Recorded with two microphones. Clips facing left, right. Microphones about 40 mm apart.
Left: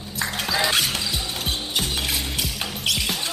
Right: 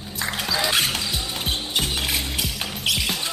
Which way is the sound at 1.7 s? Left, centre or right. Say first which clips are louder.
Right 1 dB; centre.